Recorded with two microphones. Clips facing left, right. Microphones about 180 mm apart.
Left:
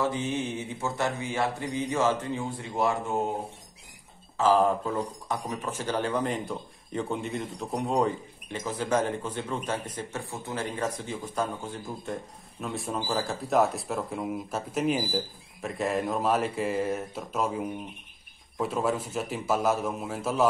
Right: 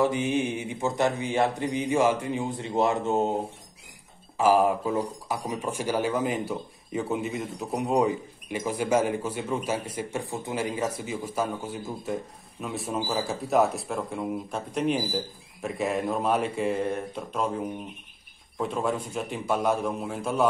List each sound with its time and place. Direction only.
0.0 s speech: 15° right (ahead or behind)
4.4 s speech: 10° right (ahead or behind)